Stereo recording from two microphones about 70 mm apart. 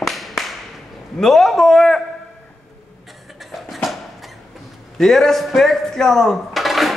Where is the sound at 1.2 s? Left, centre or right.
Centre.